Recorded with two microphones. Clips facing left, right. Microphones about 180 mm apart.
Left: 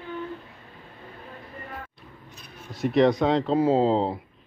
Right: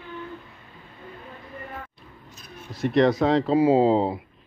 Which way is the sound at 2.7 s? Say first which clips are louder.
Even; centre (ahead or behind).